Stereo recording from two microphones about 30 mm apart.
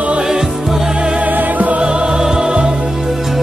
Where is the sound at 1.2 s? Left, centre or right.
Right.